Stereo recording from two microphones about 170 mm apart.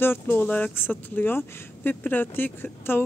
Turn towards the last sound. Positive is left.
turn(degrees=10)  # may be behind; listen again after turning